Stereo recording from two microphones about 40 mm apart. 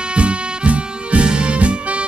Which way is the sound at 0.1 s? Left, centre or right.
Right.